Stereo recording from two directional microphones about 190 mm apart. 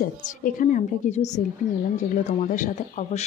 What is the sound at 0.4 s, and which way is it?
Speech, 45° left (ahead or behind).